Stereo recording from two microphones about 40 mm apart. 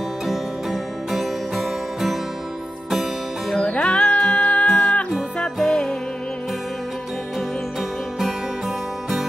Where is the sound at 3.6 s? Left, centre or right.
Left.